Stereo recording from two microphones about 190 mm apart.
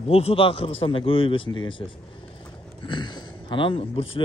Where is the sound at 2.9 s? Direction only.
25° left (ahead or behind).